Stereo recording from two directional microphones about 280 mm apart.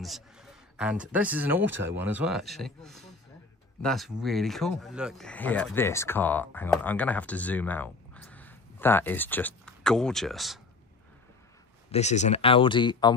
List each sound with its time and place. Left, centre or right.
0.0 s a man's voice: centre
11.9 s speech: left